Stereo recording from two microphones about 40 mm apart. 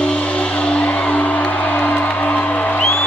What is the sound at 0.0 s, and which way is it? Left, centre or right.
Music, left.